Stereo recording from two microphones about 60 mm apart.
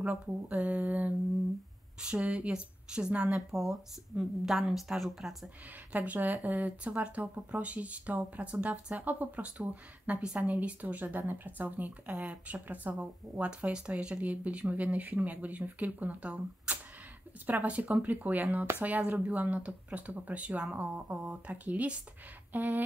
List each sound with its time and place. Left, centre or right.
0.0 s speech: right; by 3.8 s centre
4.1 s speech: right
4.5 s speech: centre
5.9 s speech: right